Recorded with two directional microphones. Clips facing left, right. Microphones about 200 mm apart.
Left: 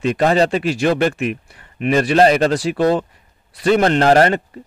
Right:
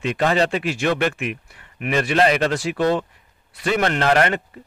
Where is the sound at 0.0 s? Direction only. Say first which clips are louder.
Left 4 dB; 35° left (ahead or behind).